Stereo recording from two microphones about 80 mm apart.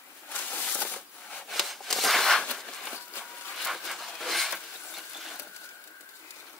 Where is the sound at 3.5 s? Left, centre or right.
Centre.